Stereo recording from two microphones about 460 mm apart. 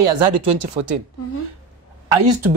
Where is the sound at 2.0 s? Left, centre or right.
Right.